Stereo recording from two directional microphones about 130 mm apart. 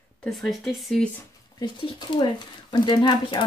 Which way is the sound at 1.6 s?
35° left (ahead or behind).